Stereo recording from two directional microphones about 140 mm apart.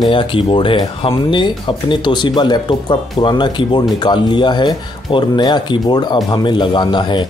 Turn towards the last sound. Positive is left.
turn(degrees=35)  # may be behind; listen again after turning